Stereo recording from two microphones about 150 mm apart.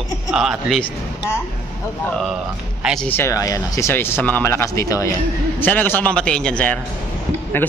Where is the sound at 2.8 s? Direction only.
5° right (ahead or behind).